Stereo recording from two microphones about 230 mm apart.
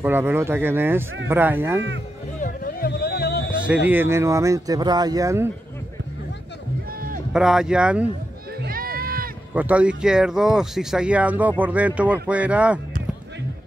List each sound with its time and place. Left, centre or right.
0.0 s speech: centre
2.4 s music: left
3.6 s speech: centre
7.3 s speech: centre
8.6 s run: right
9.5 s speech: centre